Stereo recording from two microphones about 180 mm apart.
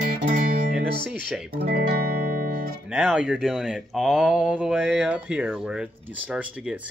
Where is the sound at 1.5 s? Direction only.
55° right (ahead or behind).